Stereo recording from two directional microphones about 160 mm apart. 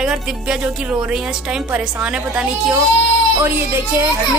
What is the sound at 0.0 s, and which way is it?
A woman's voice, 5° right (ahead or behind).